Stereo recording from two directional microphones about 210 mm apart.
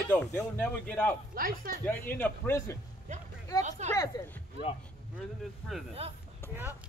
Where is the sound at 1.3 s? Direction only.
45° right (ahead or behind).